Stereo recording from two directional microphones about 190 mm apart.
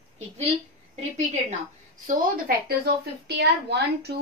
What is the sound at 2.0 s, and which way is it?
A woman's voice, 55° right (ahead or behind).